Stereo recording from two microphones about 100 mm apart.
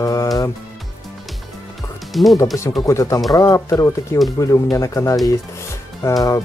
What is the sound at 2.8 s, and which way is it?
Speech, 30° left (ahead or behind).